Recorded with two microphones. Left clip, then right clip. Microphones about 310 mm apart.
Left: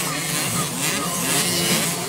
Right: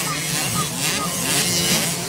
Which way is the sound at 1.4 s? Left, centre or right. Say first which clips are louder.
Right 2 dB; centre.